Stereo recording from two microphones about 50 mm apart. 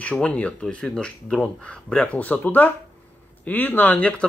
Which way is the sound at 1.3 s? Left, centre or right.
Centre.